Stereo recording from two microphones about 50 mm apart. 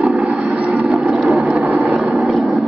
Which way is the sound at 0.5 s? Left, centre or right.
Right.